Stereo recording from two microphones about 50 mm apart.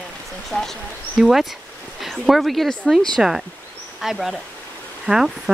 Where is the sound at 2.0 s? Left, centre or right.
Centre.